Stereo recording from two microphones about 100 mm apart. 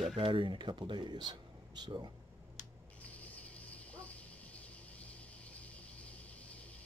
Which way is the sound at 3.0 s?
15° left (ahead or behind).